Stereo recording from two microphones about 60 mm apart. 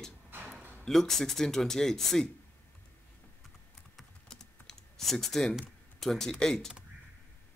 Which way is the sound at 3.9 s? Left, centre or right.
Centre.